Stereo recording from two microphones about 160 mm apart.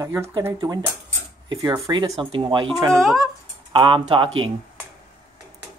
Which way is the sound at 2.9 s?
Centre (ahead or behind).